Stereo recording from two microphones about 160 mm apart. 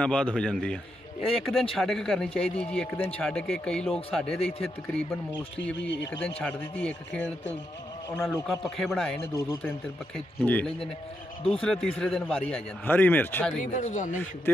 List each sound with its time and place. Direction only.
0.0 s a man's voice: 5° left (ahead or behind)
5.6 s a man's voice: 90° left
6.2 s a man's voice: 5° left (ahead or behind)
8.2 s a man's voice: 20° left (ahead or behind)
8.5 s speech: centre (ahead or behind)
9.2 s a man's voice: 15° left (ahead or behind)
13.6 s speech: 50° left (ahead or behind)